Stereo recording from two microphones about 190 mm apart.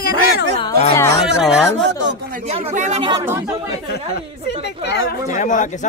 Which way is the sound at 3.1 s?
15° right (ahead or behind).